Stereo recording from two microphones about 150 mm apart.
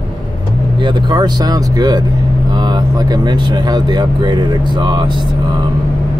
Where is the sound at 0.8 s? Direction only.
30° right (ahead or behind).